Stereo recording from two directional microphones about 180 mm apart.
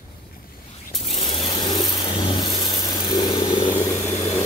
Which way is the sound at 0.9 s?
35° left (ahead or behind).